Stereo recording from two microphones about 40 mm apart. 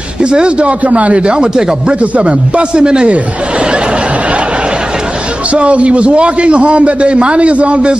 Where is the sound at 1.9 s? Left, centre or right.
Right.